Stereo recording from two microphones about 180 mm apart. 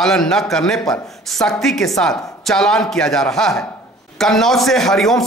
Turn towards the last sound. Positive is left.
turn(degrees=0)  # may be behind; listen again after turning